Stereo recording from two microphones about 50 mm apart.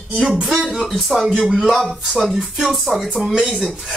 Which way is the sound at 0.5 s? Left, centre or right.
Centre.